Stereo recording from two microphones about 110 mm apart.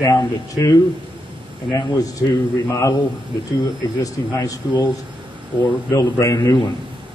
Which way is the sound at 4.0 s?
30° left (ahead or behind).